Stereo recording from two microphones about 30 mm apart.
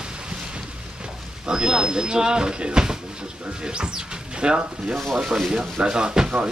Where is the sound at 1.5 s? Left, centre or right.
Right.